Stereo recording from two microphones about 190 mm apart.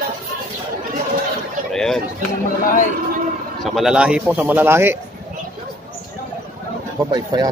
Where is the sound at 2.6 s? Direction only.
45° left (ahead or behind).